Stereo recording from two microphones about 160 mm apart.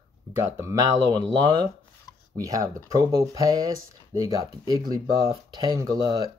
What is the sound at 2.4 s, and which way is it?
Speech, 20° right (ahead or behind).